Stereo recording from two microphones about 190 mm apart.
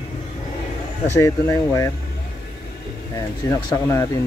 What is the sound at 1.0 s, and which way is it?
Speech, 15° left (ahead or behind).